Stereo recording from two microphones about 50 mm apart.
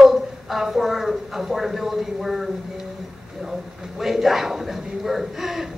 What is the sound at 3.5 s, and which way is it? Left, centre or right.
A man's voice, centre.